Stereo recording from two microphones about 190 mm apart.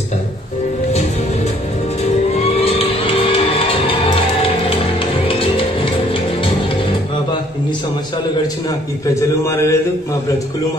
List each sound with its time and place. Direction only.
2.4 s music: 30° left (ahead or behind)
5.3 s music: 30° left (ahead or behind)
9.1 s a man's voice: 15° left (ahead or behind)